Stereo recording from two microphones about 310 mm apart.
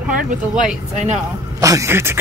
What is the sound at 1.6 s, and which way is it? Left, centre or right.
Speech, centre.